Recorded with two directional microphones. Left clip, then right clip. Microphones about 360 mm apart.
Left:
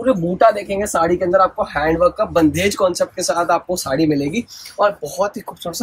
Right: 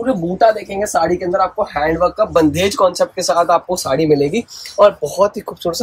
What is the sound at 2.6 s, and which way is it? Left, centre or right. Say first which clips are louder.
Speech: right 3 dB; centre.